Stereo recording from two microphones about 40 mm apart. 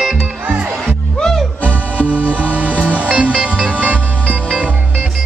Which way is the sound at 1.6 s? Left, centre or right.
Left.